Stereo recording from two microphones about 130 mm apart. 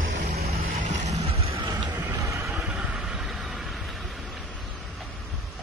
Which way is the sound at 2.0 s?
15° right (ahead or behind).